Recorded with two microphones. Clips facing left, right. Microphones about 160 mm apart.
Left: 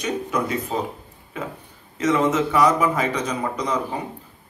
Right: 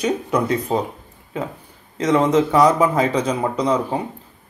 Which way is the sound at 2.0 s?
35° right (ahead or behind).